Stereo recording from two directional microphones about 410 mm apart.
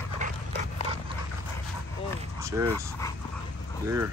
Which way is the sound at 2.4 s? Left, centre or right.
Centre.